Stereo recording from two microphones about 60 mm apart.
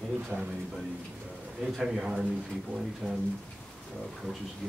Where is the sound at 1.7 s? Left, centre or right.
Centre.